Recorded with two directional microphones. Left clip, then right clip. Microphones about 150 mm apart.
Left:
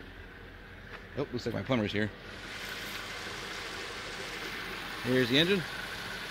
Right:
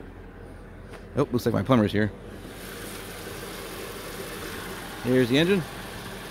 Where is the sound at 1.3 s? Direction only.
35° right (ahead or behind).